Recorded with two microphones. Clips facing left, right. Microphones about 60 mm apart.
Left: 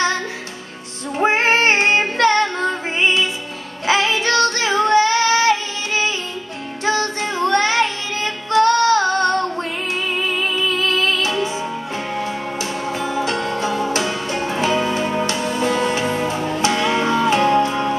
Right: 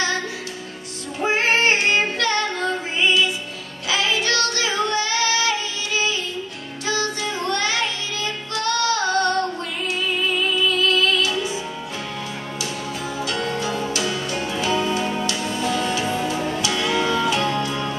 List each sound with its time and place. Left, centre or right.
1.2 s female singing: left
3.8 s child singing: left
6.9 s music: left
13.0 s music: left